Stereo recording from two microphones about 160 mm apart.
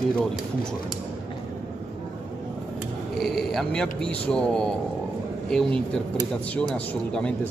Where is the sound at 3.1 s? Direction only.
Centre (ahead or behind).